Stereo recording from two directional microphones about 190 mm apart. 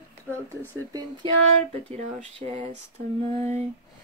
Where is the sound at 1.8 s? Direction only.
35° right (ahead or behind).